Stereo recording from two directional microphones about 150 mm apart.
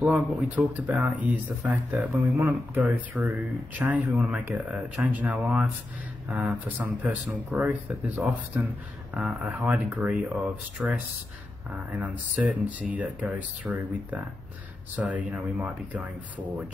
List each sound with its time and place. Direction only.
0.0 s speech: 10° right (ahead or behind)